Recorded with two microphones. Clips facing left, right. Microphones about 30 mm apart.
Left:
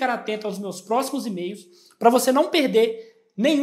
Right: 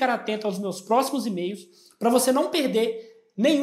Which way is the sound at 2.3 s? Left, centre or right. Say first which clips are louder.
Left 4 dB; centre.